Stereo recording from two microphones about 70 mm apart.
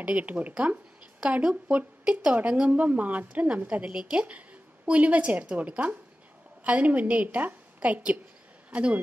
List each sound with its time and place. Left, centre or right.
0.0 s a woman's voice: right